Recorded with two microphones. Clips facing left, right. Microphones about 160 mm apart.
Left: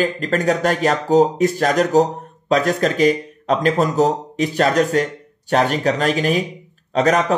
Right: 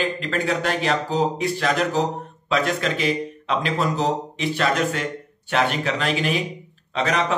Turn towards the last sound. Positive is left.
turn(degrees=45)  # may be behind; listen again after turning